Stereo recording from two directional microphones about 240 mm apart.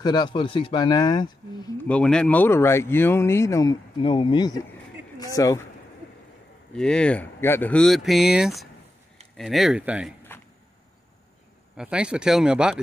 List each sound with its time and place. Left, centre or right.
0.0 s speech: centre
1.9 s speech: centre
6.7 s speech: centre
11.7 s speech: centre